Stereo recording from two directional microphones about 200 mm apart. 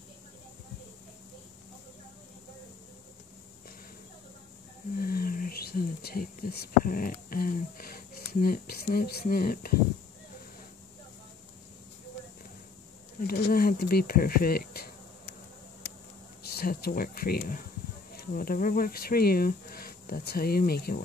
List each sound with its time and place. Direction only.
4.9 s speech: 50° left (ahead or behind)
13.3 s speech: 50° left (ahead or behind)
16.4 s speech: 50° left (ahead or behind)